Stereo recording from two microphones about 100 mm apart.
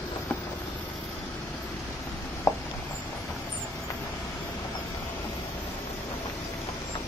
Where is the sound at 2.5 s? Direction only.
30° left (ahead or behind).